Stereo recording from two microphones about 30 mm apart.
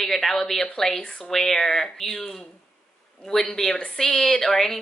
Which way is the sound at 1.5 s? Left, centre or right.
Left.